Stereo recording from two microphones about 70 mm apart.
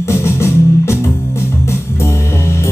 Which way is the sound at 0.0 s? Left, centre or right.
Left.